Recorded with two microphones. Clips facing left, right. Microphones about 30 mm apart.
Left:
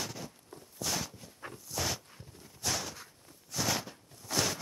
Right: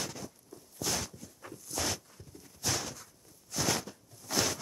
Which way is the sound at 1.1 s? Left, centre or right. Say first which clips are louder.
Left 1 dB; left.